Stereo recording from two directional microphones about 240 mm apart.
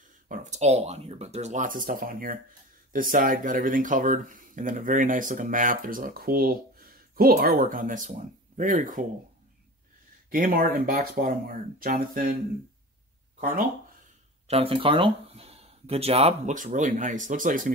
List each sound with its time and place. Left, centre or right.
0.3 s speech: right
10.3 s speech: right
14.5 s speech: right